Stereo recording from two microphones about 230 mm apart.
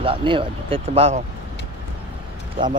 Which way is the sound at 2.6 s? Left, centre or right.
Right.